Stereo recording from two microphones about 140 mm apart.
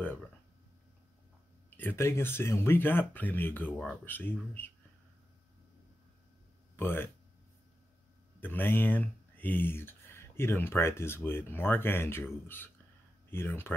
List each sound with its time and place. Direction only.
1.8 s speech: 15° left (ahead or behind)
6.8 s speech: 15° left (ahead or behind)
8.4 s speech: 15° left (ahead or behind)